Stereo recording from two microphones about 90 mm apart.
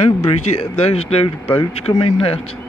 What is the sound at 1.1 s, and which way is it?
Speech, 90° left.